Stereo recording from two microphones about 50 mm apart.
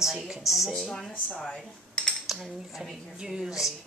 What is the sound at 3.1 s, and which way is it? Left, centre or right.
Speech, centre.